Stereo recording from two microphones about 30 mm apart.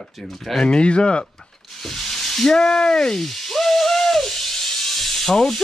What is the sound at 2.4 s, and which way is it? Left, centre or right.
Speech, left.